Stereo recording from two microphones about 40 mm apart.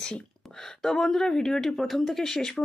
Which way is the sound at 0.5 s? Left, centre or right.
Centre.